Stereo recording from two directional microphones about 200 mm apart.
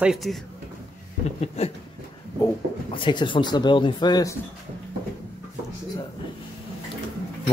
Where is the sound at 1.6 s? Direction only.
30° left (ahead or behind).